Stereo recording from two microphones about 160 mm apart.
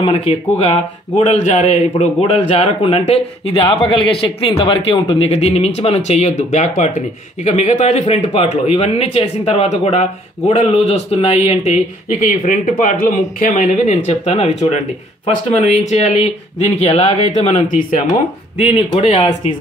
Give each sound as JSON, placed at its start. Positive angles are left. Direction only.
{"t": 0.0, "sound": "speech", "side_deg": 35}
{"t": 18.9, "sound": "speech", "side_deg": 40}